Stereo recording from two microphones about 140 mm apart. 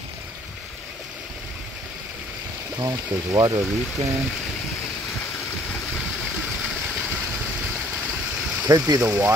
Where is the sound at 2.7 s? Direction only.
25° right (ahead or behind).